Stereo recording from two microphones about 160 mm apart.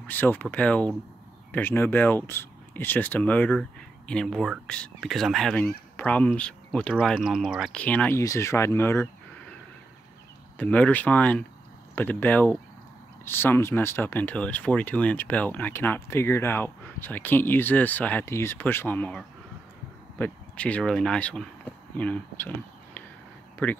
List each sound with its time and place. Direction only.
0.0 s speech: 10° left (ahead or behind)
7.7 s speech: 10° left (ahead or behind)
10.6 s speech: 10° left (ahead or behind)
23.6 s speech: 10° left (ahead or behind)